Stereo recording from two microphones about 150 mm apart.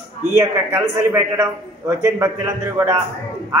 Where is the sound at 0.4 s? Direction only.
15° right (ahead or behind).